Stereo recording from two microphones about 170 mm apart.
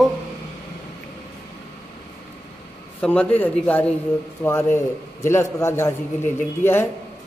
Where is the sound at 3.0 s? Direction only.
10° left (ahead or behind).